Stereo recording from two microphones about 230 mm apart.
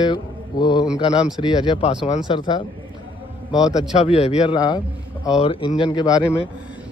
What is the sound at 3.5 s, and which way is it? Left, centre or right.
Speech, centre.